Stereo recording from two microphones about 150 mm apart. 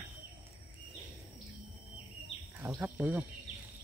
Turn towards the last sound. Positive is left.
turn(degrees=-10)  # may be behind; listen again after turning